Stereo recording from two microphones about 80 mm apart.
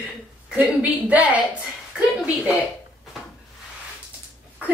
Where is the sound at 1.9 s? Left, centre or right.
Centre.